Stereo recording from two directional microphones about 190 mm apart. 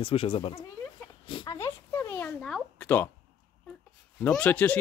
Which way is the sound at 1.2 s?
25° left (ahead or behind).